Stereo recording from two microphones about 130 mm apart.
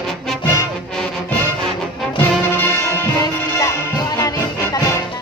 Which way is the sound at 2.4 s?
15° left (ahead or behind).